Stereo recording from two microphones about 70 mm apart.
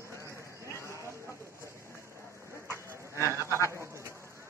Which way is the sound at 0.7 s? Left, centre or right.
Left.